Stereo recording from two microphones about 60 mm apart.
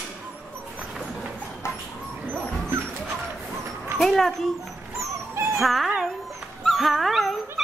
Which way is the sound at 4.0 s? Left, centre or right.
Centre.